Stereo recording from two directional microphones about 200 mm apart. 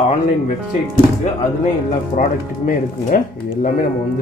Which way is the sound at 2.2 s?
45° left (ahead or behind).